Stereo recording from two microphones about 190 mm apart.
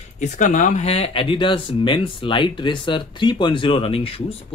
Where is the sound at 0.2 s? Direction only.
45° left (ahead or behind).